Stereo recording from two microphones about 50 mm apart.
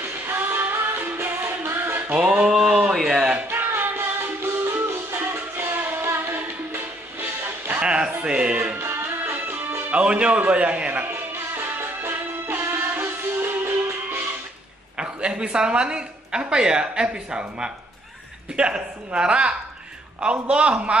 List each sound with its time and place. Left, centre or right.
0.3 s music: right
2.4 s speech: centre
3.4 s music: right
7.8 s music: centre
8.7 s music: right
9.8 s speech: right
11.1 s music: right
15.0 s speech: centre